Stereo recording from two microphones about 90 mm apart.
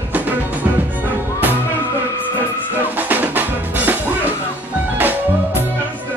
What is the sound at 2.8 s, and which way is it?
Drum kit, 20° right (ahead or behind).